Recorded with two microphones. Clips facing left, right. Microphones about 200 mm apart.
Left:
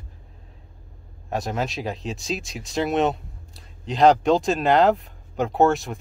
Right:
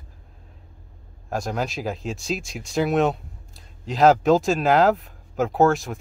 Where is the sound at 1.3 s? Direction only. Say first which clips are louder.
Even; centre (ahead or behind).